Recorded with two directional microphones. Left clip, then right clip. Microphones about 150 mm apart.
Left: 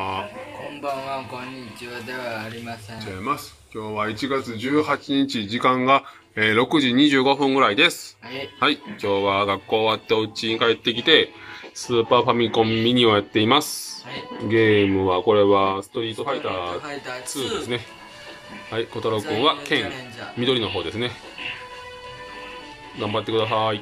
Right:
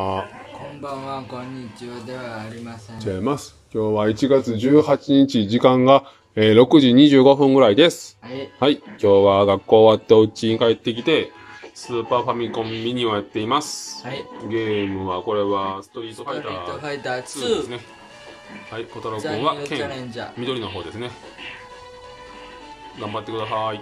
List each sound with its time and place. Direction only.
1.0 s speech: 20° right (ahead or behind)
3.0 s speech: 50° right (ahead or behind); by 11.2 s 15° right (ahead or behind)
11.9 s speech: centre (ahead or behind)
16.8 s speech: 90° right
18.7 s speech: centre (ahead or behind)
22.9 s speech: centre (ahead or behind)